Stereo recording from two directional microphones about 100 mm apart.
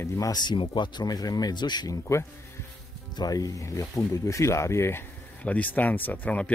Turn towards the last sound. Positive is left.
turn(degrees=15)  # may be behind; listen again after turning